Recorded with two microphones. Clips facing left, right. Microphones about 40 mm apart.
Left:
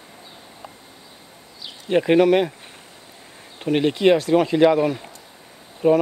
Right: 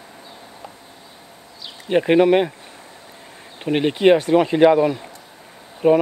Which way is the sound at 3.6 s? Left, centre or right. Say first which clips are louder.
Right 1 dB; centre.